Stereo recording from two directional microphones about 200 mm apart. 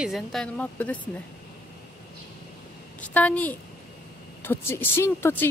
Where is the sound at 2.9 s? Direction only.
5° left (ahead or behind).